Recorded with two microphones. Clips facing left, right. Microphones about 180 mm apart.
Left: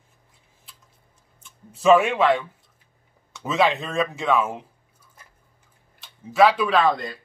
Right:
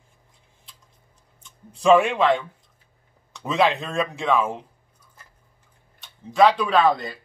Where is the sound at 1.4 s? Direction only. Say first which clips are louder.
Left 1 dB; 5° left (ahead or behind).